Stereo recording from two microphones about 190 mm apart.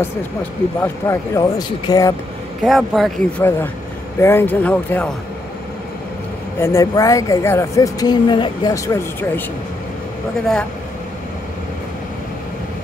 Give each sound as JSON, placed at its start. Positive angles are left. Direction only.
{"t": 0.7, "sound": "a woman's voice", "side_deg": 15}
{"t": 2.6, "sound": "speech", "side_deg": 0}
{"t": 3.4, "sound": "a woman's voice", "side_deg": 10}
{"t": 6.6, "sound": "a woman's voice", "side_deg": 15}